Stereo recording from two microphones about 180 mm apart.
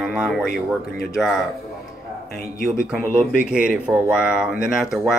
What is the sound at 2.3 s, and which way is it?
Speech, 60° left (ahead or behind).